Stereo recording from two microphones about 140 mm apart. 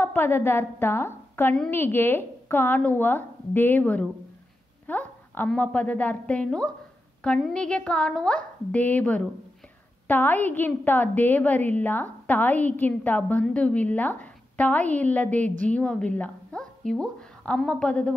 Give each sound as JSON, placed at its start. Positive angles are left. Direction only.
{"t": 0.0, "sound": "a woman's voice", "side_deg": 15}
{"t": 4.8, "sound": "a sound", "side_deg": 15}
{"t": 5.5, "sound": "a woman's voice", "side_deg": 10}